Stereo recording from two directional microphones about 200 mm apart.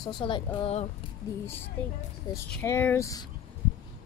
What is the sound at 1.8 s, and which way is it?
Speech, 5° left (ahead or behind).